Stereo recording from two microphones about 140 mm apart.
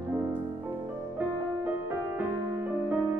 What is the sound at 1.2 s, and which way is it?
Music, 10° right (ahead or behind).